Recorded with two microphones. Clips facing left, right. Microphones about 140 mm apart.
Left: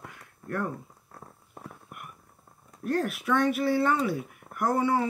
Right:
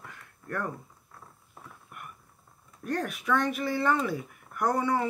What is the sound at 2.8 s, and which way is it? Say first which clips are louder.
Speech: left 3 dB; 5° left (ahead or behind).